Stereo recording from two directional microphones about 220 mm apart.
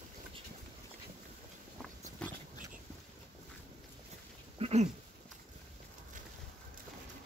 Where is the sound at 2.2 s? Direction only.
5° left (ahead or behind).